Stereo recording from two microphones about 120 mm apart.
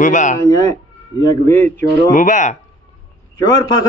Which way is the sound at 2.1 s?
90° left.